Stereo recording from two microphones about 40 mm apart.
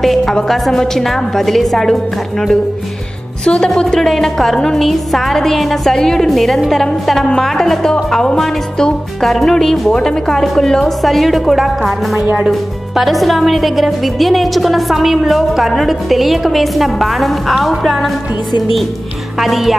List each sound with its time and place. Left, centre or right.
0.0 s a woman's voice: centre; by 3.7 s left
3.7 s a woman's voice: centre